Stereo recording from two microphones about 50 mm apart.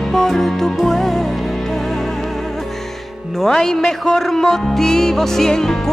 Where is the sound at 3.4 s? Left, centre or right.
Centre.